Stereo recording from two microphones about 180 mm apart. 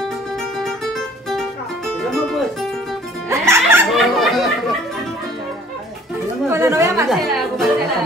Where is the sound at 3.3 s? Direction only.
15° right (ahead or behind).